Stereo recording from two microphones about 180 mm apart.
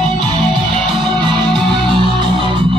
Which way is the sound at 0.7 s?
5° left (ahead or behind).